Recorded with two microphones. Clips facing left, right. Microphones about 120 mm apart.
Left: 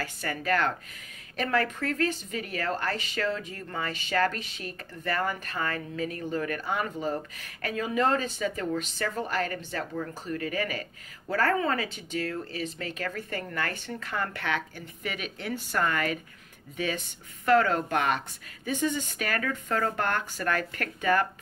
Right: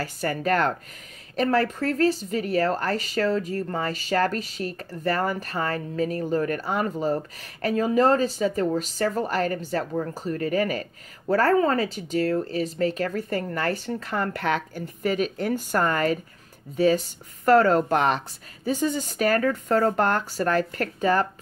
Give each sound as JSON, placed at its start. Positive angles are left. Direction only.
{"t": 0.0, "sound": "a woman's voice", "side_deg": -40}